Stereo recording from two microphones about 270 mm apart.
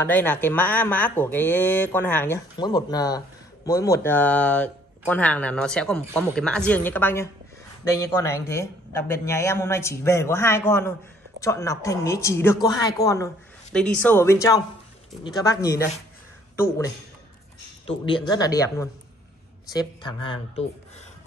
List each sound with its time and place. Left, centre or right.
0.0 s speech: centre